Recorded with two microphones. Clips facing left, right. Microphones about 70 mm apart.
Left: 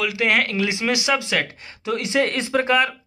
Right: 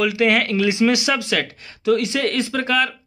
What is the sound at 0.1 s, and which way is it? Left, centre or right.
Speech, centre.